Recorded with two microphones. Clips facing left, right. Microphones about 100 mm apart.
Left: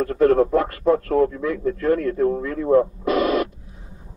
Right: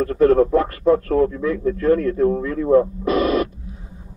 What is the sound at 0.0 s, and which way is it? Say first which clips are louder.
Speech: right 2 dB; centre (ahead or behind).